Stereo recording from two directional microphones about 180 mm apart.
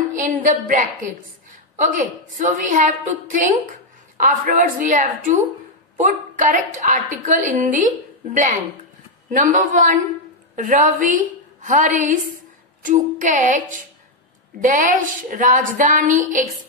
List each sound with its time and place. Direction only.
0.1 s a woman's voice: 45° right (ahead or behind)